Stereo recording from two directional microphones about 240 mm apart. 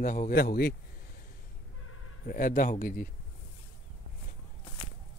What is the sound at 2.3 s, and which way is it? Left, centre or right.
Speech, left.